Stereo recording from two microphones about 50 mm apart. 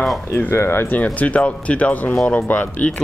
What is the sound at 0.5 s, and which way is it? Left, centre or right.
Speech, left.